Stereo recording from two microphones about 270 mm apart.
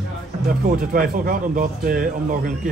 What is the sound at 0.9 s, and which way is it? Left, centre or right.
Speech, right.